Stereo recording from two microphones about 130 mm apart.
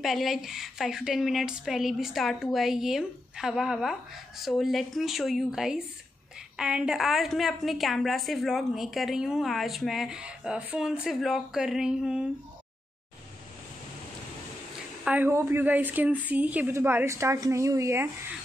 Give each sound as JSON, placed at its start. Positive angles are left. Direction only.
{"t": 0.0, "sound": "a woman's voice", "side_deg": 0}
{"t": 15.0, "sound": "a woman's voice", "side_deg": -15}